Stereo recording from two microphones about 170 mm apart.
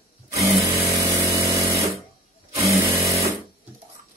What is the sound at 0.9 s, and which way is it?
Power tool, 20° right (ahead or behind).